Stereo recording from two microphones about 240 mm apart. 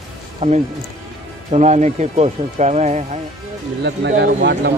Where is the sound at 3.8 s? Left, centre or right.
Right.